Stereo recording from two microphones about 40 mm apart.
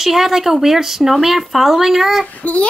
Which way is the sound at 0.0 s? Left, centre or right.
Centre.